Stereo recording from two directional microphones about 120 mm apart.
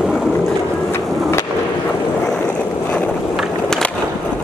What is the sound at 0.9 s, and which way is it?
Skateboard, 20° left (ahead or behind).